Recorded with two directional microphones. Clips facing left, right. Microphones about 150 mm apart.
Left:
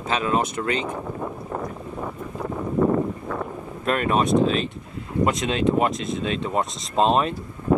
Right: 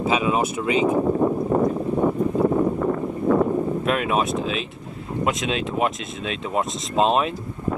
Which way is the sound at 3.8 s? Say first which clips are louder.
Even; 5° right (ahead or behind).